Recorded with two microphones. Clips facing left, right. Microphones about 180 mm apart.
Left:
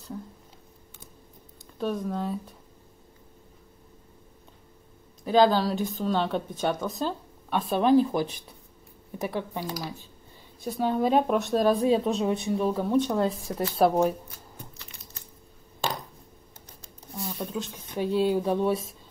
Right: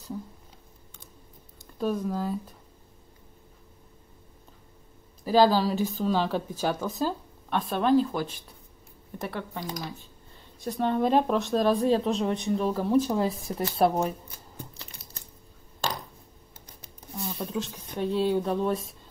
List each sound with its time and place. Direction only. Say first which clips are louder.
1.8 s speech: right 1 dB; centre (ahead or behind)
5.2 s speech: even; 5° right (ahead or behind); by 9.7 s 15° left (ahead or behind)
10.6 s speech: even; 5° left (ahead or behind)
17.4 s speech: right 2 dB; centre (ahead or behind)